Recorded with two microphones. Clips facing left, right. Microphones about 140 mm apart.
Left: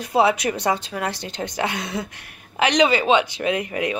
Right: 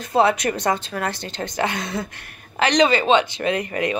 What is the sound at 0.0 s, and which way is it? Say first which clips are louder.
A woman's voice: even; 10° left (ahead or behind).